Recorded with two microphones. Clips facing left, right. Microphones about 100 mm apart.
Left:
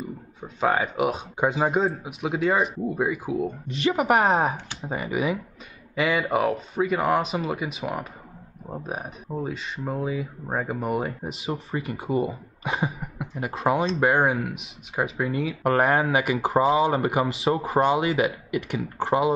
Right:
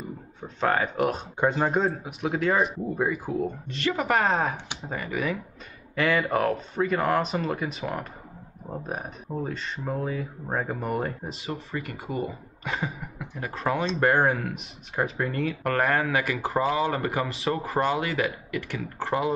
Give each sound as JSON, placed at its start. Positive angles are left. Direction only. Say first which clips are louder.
{"t": 0.4, "sound": "speech", "louder": "left 1 dB", "side_deg": 5}
{"t": 3.9, "sound": "speech", "louder": "left 3 dB", "side_deg": 20}
{"t": 4.9, "sound": "speech", "louder": "left 3 dB", "side_deg": 15}
{"t": 11.5, "sound": "speech", "louder": "left 3 dB", "side_deg": 30}
{"t": 12.2, "sound": "speech", "louder": "left 5 dB", "side_deg": 20}
{"t": 12.7, "sound": "a sound", "louder": "left 3 dB", "side_deg": 30}
{"t": 13.9, "sound": "speech", "louder": "left 1 dB", "side_deg": 5}
{"t": 15.6, "sound": "speech", "louder": "left 4 dB", "side_deg": 20}
{"t": 17.5, "sound": "speech", "louder": "left 4 dB", "side_deg": 30}
{"t": 17.8, "sound": "speech", "louder": "left 4 dB", "side_deg": 20}